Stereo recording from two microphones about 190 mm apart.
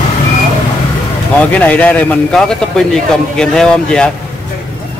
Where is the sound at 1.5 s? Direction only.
10° left (ahead or behind).